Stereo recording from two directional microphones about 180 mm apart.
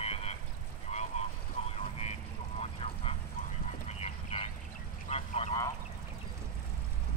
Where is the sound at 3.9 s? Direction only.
35° left (ahead or behind).